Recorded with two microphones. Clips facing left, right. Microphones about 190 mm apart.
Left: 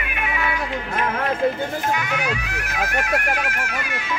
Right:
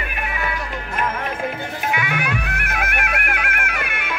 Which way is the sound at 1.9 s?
60° right (ahead or behind).